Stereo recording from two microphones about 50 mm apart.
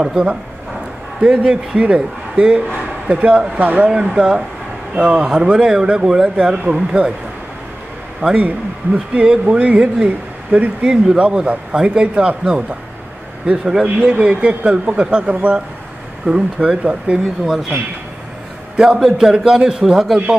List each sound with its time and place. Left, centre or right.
0.0 s a man's voice: centre
3.9 s a man's voice: centre
8.4 s a man's voice: right
18.8 s a man's voice: centre